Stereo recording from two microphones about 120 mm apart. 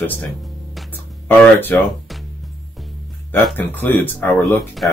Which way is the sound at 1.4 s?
15° left (ahead or behind).